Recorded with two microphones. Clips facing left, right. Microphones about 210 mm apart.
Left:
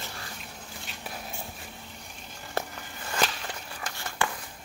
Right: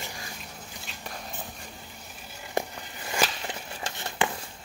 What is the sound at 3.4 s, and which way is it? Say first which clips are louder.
Crumpling: right 2 dB; 20° right (ahead or behind).